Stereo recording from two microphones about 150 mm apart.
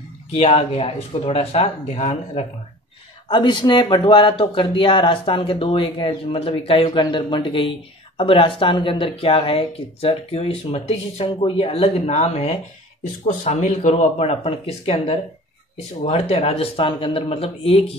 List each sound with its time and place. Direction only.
0.4 s speech: 45° left (ahead or behind)
3.3 s speech: 30° left (ahead or behind)